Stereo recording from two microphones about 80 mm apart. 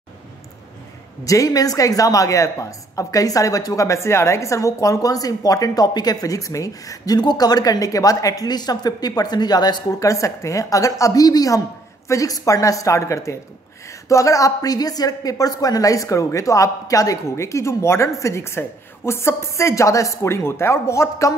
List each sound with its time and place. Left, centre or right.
1.2 s speech: left
7.2 s speech: left
9.9 s speech: left